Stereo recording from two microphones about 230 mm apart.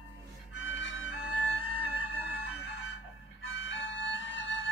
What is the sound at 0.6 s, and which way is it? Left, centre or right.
Music, left.